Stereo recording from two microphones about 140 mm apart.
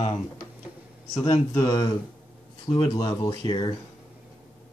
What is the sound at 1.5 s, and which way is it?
Speech, 30° left (ahead or behind).